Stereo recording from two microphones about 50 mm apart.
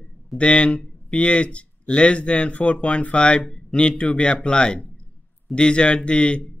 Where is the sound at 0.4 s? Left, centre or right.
Left.